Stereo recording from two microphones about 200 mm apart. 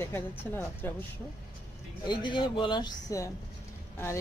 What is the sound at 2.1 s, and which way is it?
Speech, 25° left (ahead or behind).